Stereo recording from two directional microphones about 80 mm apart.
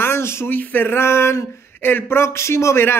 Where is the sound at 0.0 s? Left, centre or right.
Left.